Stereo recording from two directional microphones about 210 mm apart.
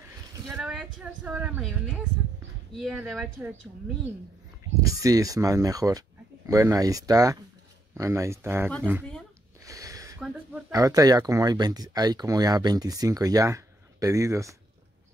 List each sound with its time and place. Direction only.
0.6 s speech: centre (ahead or behind)
4.8 s speech: 15° right (ahead or behind)
9.7 s a sound: 15° right (ahead or behind)
10.2 s speech: 10° right (ahead or behind)